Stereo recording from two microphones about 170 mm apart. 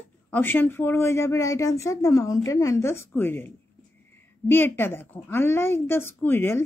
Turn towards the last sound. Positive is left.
turn(degrees=15)  # may be behind; listen again after turning